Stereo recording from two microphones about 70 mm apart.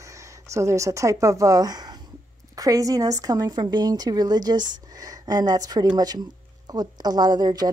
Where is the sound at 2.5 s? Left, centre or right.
Right.